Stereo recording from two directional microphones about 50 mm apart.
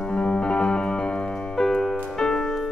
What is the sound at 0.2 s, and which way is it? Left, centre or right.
Music, centre.